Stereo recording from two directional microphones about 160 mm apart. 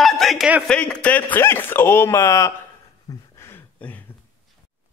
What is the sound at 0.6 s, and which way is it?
A man's voice, 5° left (ahead or behind).